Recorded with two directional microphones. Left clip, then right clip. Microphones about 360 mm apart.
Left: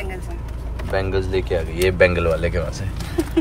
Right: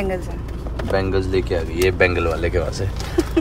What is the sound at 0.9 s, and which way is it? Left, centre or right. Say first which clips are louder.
Speech: right 2 dB; centre.